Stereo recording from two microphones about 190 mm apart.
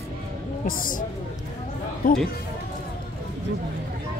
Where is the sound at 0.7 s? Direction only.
45° left (ahead or behind).